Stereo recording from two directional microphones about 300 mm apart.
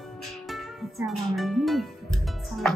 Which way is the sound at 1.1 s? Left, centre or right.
Centre.